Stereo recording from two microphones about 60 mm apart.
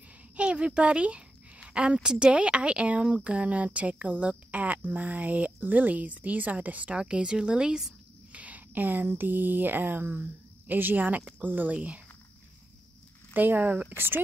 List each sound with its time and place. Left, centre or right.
0.4 s a woman's voice: centre
7.0 s speech: centre
8.4 s speech: right
13.3 s speech: right